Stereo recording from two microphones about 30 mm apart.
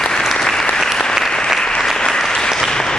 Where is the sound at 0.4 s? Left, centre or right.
Centre.